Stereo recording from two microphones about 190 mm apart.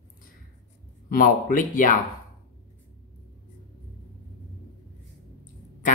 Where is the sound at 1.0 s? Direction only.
45° left (ahead or behind).